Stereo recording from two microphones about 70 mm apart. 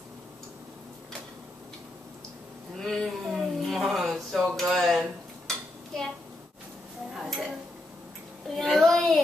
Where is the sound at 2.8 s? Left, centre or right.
Centre.